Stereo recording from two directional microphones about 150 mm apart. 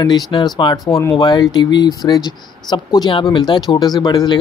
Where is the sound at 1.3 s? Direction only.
30° left (ahead or behind).